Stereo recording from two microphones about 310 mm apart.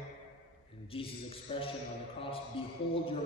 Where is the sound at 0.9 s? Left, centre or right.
Centre.